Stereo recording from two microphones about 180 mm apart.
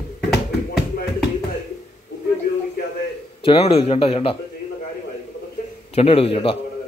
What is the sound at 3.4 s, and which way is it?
A man's voice, 30° left (ahead or behind).